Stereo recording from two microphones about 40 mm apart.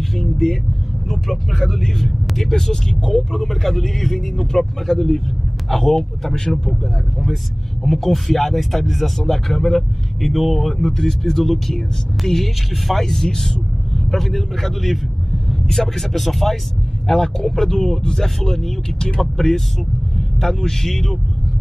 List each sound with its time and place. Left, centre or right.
0.1 s speech: centre
7.8 s speech: centre
10.2 s speech: centre
10.7 s speech: centre
17.1 s speech: centre
18.9 s speech: centre